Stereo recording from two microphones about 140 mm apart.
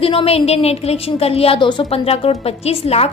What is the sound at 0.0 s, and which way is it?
A woman's voice, 40° left (ahead or behind).